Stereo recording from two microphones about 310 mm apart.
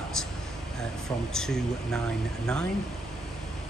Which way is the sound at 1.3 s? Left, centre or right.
Centre.